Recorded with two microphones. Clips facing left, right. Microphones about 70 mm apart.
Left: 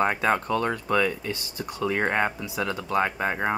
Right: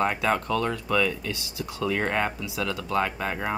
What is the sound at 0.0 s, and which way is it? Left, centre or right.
Speech, left.